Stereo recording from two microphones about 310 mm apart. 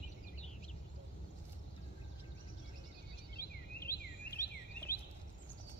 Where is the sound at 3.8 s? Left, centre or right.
Centre.